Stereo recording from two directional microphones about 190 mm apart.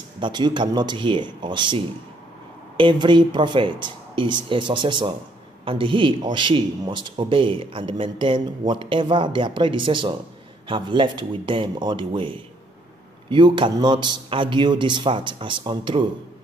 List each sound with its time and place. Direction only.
0.2 s a man's voice: 25° right (ahead or behind)